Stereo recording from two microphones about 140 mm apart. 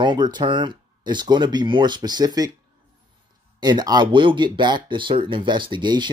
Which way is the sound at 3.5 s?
30° right (ahead or behind).